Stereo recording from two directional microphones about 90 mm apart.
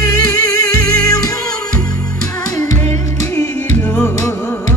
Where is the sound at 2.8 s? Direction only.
30° left (ahead or behind).